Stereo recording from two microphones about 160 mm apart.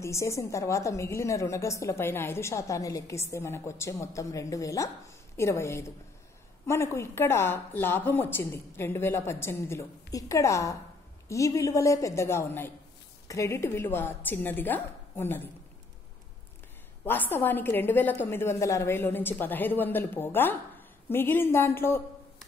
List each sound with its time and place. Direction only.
0.0 s a woman's voice: 20° left (ahead or behind)
17.0 s a woman's voice: 15° left (ahead or behind)